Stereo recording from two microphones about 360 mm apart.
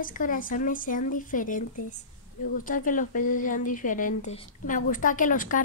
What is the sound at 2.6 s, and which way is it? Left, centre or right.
Speech, left.